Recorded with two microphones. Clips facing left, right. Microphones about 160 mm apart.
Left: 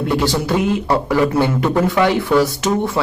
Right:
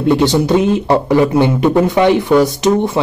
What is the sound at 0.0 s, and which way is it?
Speech, 20° right (ahead or behind).